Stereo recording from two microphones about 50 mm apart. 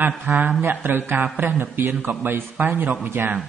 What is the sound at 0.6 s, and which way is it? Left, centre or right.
A man's voice, right.